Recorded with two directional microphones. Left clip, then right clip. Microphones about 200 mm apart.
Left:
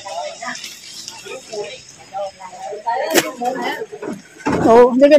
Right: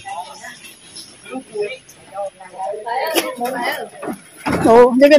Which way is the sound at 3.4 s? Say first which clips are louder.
Even; 30° right (ahead or behind).